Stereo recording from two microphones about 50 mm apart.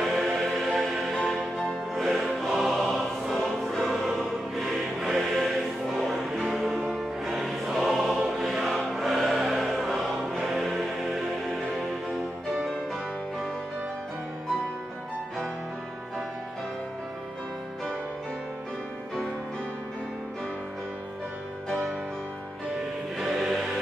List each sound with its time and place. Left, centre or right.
0.0 s music: centre
7.6 s choir: centre
8.4 s music: centre
23.1 s music: centre